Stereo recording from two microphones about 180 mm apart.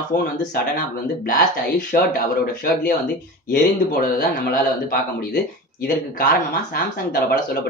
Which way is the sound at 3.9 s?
50° left (ahead or behind).